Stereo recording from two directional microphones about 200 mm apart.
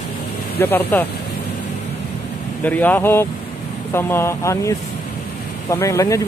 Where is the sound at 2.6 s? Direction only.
10° left (ahead or behind).